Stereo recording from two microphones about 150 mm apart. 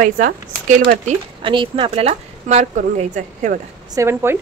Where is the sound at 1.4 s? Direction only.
35° right (ahead or behind); by 3.5 s 55° right (ahead or behind).